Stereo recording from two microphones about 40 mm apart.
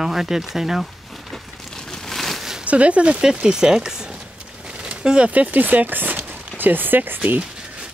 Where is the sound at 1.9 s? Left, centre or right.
Centre.